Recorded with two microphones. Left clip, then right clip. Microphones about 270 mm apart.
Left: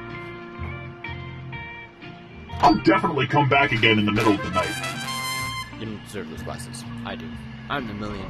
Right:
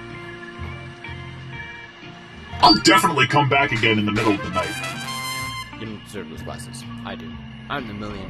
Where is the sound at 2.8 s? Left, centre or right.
Right.